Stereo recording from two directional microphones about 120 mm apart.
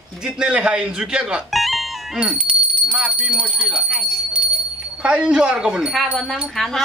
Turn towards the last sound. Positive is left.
turn(degrees=0)  # may be behind; listen again after turning